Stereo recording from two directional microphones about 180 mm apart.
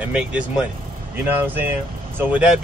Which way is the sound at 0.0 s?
5° right (ahead or behind).